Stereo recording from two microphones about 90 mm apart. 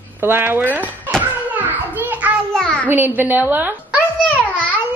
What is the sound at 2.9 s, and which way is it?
A child's voice, 20° right (ahead or behind).